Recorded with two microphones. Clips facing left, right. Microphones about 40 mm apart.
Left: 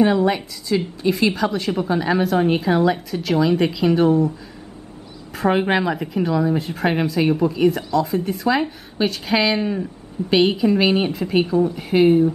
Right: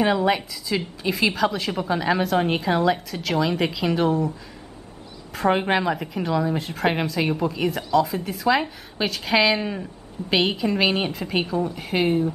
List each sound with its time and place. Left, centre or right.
0.0 s a woman's voice: centre
5.3 s a woman's voice: centre